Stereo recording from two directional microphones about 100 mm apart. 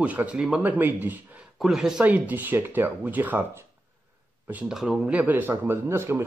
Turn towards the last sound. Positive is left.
turn(degrees=-25)  # may be behind; listen again after turning